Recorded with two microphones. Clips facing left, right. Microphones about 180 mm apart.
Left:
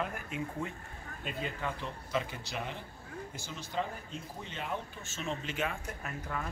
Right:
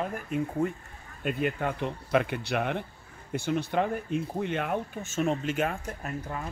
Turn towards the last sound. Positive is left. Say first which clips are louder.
# right 4 dB
turn(degrees=-25)  # may be behind; listen again after turning